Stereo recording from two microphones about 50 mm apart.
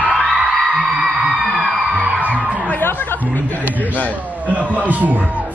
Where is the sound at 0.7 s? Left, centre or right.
Right.